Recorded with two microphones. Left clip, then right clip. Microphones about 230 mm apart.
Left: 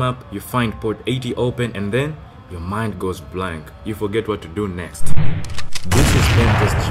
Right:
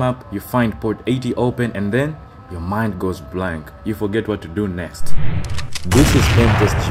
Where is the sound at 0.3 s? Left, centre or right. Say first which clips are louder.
Right 2 dB; centre.